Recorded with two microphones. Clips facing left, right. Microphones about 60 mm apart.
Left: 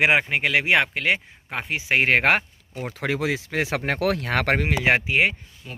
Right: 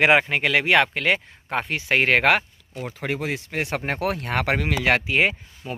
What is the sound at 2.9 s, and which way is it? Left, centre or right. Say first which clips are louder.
Speech: left 3 dB; left.